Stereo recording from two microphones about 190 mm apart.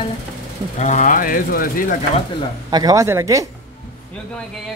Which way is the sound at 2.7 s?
20° right (ahead or behind).